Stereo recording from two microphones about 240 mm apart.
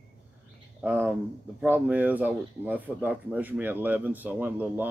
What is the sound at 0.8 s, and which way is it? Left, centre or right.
Speech, centre.